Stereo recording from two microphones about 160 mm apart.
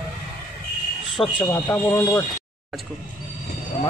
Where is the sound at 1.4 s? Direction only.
20° left (ahead or behind).